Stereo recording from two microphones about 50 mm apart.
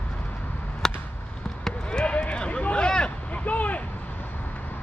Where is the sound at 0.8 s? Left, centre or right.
Centre.